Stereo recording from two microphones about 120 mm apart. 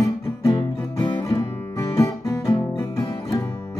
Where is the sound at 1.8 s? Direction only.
25° left (ahead or behind).